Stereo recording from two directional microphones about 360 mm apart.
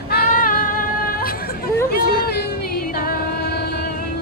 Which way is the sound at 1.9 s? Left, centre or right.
Left.